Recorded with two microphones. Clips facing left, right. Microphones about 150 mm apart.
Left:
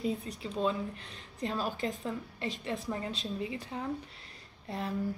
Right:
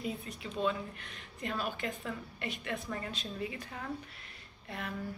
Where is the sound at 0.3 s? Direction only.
30° left (ahead or behind).